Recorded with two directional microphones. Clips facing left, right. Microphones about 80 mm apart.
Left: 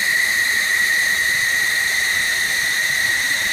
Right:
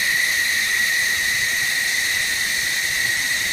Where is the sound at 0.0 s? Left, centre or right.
Left.